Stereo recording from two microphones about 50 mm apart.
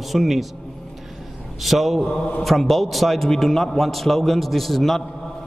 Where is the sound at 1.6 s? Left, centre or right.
Centre.